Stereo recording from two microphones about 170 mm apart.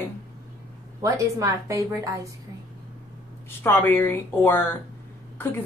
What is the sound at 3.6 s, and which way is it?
Speech, 15° left (ahead or behind).